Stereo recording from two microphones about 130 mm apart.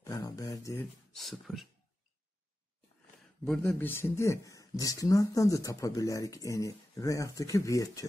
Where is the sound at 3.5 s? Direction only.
15° left (ahead or behind).